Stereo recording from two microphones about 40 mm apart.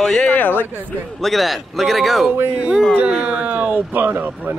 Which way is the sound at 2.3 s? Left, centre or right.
Right.